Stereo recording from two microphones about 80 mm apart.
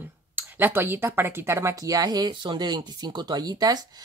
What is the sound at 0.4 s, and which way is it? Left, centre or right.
Speech, right.